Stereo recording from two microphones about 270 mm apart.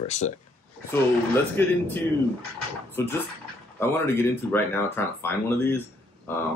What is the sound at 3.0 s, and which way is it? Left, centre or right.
Speech, centre.